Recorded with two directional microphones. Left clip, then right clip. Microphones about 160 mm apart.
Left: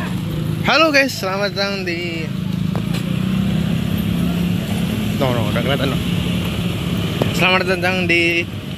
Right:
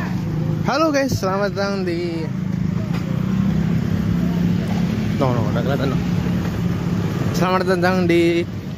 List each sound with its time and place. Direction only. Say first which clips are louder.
0.7 s speech: left 5 dB; 15° right (ahead or behind)
7.4 s speech: left 2 dB; 20° right (ahead or behind); by 8.5 s 40° right (ahead or behind)